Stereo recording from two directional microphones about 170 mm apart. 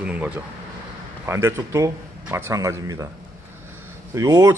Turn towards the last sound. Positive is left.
turn(degrees=-20)  # may be behind; listen again after turning